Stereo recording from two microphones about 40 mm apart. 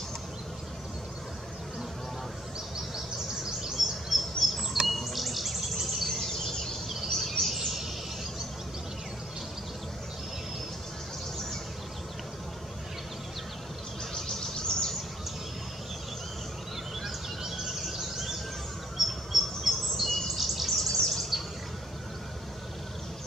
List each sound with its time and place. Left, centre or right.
3.7 s a sound: centre
4.8 s insect: centre
6.5 s a sound: centre
7.2 s bird: centre
7.5 s bird: centre
14.1 s bird: centre
17.0 s bird: centre
20.7 s bird: centre